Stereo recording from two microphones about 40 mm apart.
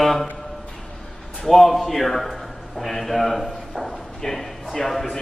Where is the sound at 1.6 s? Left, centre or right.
Centre.